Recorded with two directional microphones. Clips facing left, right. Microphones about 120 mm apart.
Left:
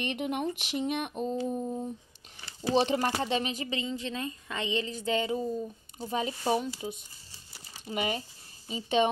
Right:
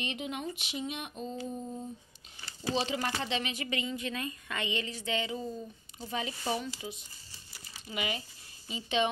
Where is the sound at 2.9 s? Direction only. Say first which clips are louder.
Left 5 dB; 40° left (ahead or behind).